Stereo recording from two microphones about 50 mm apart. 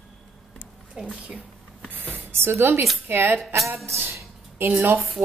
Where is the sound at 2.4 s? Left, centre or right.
Right.